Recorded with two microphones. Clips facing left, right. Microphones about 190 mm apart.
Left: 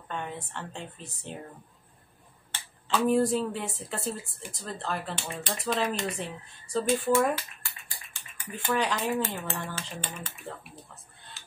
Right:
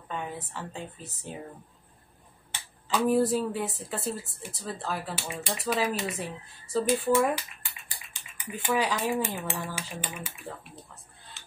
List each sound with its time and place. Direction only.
0.1 s speech: 5° right (ahead or behind)
2.5 s speech: 5° right (ahead or behind)
7.3 s a sound: 15° right (ahead or behind); by 11.5 s centre (ahead or behind)